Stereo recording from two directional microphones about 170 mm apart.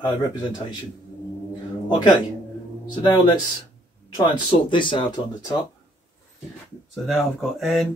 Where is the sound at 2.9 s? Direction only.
25° left (ahead or behind).